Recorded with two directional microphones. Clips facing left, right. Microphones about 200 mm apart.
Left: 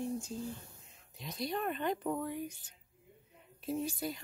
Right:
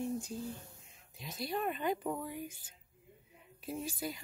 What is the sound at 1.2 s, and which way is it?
Speech, 5° right (ahead or behind).